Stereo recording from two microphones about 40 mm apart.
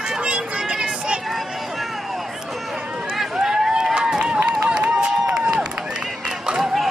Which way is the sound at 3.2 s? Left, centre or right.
Centre.